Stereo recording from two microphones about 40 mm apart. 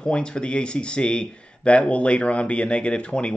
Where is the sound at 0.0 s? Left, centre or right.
Left.